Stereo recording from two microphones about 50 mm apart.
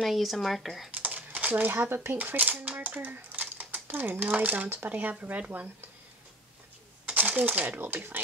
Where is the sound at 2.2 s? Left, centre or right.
Right.